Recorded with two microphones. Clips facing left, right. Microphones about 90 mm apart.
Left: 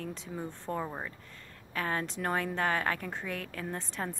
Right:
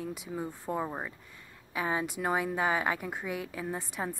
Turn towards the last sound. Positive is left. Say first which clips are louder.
# right 2 dB
turn(degrees=-10)  # may be behind; listen again after turning